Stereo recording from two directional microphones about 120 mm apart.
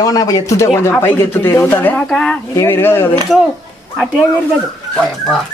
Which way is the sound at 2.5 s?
20° left (ahead or behind).